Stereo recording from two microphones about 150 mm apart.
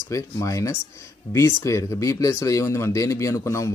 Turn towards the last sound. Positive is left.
turn(degrees=20)  # may be behind; listen again after turning